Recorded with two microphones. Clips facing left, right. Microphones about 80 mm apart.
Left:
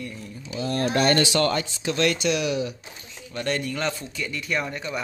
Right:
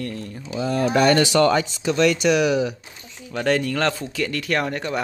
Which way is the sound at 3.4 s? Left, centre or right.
Right.